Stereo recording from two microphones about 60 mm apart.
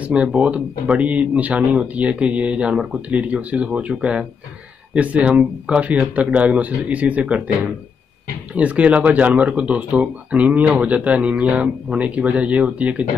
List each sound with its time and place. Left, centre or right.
0.0 s speech: centre
8.5 s speech: right